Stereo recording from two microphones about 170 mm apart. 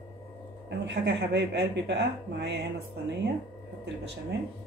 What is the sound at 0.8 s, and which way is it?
Speech, 85° right.